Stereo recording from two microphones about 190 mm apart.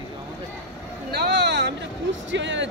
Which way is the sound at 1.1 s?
60° right (ahead or behind).